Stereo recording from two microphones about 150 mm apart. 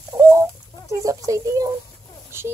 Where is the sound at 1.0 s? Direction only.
20° right (ahead or behind).